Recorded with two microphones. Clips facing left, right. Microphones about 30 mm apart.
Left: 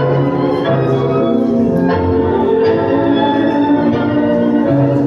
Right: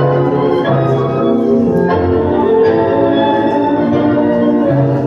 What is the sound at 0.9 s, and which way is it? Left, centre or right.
Organ, centre.